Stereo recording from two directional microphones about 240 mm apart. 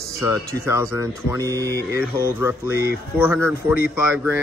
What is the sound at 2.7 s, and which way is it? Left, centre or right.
Speech, left.